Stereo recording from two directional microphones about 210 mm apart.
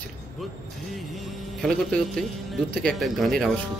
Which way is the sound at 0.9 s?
Centre (ahead or behind).